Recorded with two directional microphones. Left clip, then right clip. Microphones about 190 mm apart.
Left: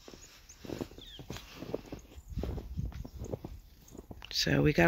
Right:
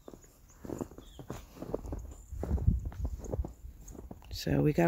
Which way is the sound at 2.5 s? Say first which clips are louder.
Right 4 dB; centre (ahead or behind).